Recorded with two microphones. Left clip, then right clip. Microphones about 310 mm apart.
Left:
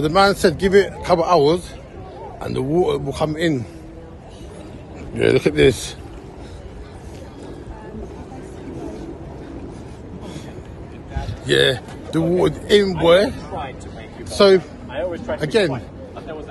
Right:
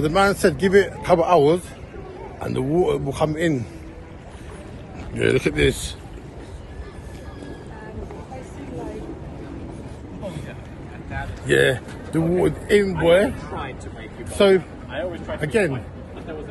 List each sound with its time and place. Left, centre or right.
0.0 s speech: centre
5.1 s speech: centre
11.4 s speech: centre
13.4 s vehicle: left
14.4 s speech: centre
14.9 s a sound: left
15.4 s speech: centre